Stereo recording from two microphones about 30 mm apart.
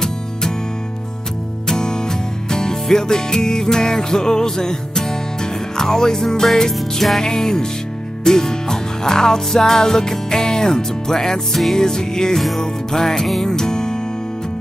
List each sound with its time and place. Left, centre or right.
0.0 s music: centre
1.7 s music: left